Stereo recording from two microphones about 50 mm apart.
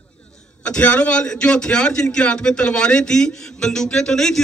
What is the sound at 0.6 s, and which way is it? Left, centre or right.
A man's voice, left.